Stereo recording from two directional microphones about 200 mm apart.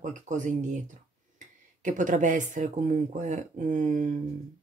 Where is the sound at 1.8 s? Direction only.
40° right (ahead or behind).